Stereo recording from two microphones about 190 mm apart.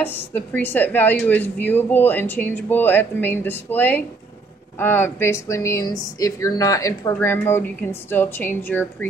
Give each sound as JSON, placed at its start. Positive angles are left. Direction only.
{"t": 0.0, "sound": "speech", "side_deg": 10}